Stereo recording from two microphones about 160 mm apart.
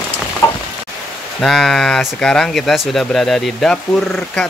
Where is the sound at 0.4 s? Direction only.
15° left (ahead or behind).